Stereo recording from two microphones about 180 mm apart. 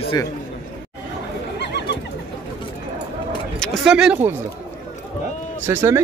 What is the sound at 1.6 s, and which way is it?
Bird, 70° left (ahead or behind).